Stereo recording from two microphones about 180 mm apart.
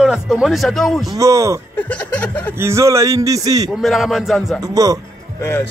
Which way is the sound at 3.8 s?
Centre (ahead or behind).